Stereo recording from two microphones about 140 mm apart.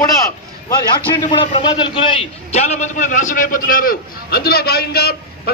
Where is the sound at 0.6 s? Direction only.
35° left (ahead or behind).